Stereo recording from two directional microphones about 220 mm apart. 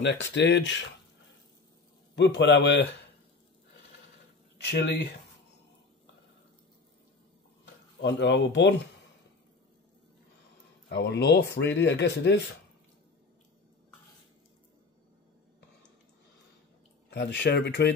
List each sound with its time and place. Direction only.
0.0 s speech: 55° left (ahead or behind)
2.1 s speech: 50° left (ahead or behind)
4.6 s speech: 50° left (ahead or behind)
8.0 s speech: 50° left (ahead or behind)
10.9 s speech: 50° left (ahead or behind)
17.1 s speech: 50° left (ahead or behind)